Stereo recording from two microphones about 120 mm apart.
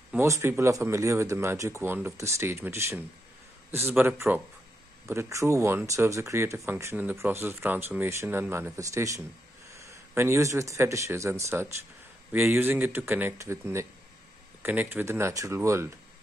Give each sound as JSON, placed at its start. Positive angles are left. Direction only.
{"t": 0.2, "sound": "speech", "side_deg": -20}